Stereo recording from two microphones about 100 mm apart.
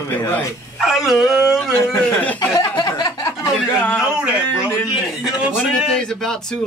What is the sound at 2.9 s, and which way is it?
Speech, 45° left (ahead or behind).